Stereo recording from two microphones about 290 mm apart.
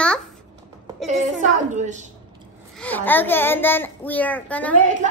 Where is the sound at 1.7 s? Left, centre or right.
Right.